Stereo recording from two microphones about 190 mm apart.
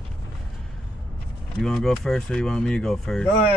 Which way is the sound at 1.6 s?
Centre (ahead or behind).